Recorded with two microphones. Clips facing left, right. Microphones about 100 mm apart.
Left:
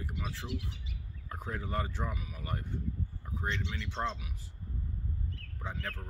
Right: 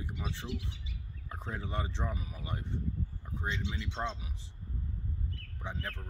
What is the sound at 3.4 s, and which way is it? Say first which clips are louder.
Speech: even; 15° right (ahead or behind).